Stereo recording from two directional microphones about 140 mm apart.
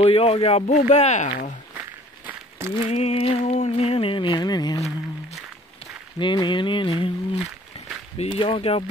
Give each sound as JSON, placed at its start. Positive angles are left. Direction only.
{"t": 0.0, "sound": "speech", "side_deg": 45}
{"t": 2.2, "sound": "a sound", "side_deg": -20}
{"t": 2.9, "sound": "speech", "side_deg": 45}
{"t": 6.1, "sound": "speech", "side_deg": 35}
{"t": 8.2, "sound": "speech", "side_deg": 40}